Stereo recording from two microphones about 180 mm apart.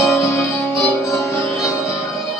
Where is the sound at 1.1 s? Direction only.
15° left (ahead or behind).